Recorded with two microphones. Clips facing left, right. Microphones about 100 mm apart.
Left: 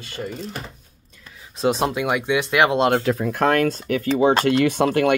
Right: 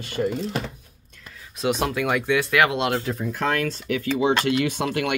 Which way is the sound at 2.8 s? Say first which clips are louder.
Left 6 dB; 50° left (ahead or behind).